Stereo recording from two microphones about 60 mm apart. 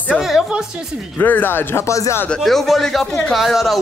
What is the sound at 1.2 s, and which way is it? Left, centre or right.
Speech, left.